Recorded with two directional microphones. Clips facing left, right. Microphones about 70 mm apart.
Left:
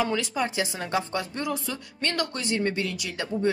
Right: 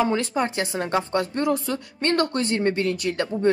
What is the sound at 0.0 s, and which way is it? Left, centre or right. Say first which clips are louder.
Speech: right 4 dB; right.